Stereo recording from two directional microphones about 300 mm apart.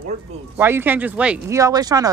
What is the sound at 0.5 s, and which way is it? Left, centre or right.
Speech, centre.